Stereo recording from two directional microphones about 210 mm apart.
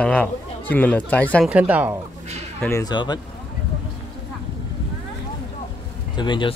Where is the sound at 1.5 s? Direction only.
5° right (ahead or behind).